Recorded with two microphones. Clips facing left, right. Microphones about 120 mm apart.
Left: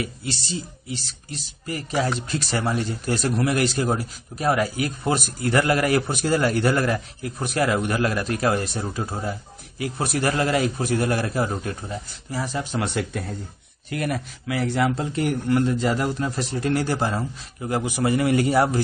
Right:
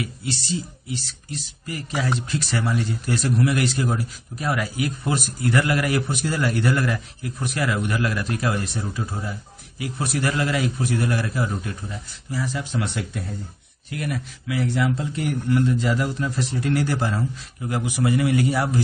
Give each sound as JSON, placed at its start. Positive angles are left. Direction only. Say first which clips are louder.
{"t": 2.0, "sound": "speech", "louder": "left 1 dB", "side_deg": 40}